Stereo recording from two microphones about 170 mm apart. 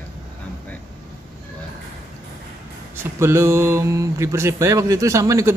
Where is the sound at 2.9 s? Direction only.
15° right (ahead or behind).